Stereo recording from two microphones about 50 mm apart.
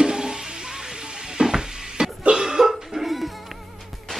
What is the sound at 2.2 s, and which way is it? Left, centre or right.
Cough, centre.